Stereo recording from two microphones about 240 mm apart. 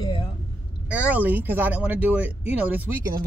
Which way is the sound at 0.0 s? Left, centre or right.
Centre.